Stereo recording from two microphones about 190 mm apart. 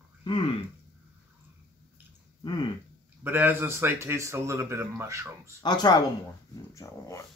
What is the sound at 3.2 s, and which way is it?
Speech, 10° right (ahead or behind).